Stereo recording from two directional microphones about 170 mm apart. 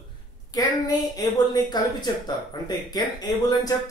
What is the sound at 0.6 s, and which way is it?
Speech, 20° left (ahead or behind).